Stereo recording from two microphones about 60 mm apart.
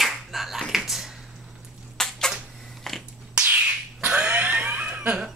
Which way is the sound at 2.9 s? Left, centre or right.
Centre.